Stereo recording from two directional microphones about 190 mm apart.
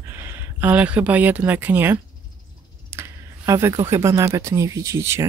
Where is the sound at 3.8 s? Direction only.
15° right (ahead or behind).